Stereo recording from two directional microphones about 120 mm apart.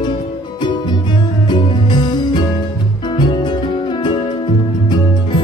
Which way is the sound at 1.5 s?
40° left (ahead or behind).